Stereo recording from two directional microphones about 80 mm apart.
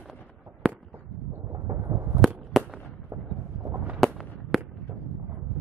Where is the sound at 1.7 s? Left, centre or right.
Right.